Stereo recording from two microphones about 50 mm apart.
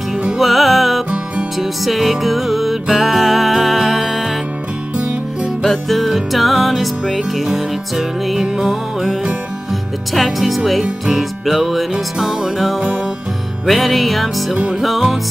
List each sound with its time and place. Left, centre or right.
0.4 s music: centre
4.9 s music: right
5.6 s music: centre
10.1 s music: centre